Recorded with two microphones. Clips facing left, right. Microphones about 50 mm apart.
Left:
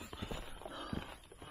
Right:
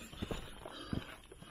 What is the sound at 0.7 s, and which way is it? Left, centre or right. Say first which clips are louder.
Walk: even; left.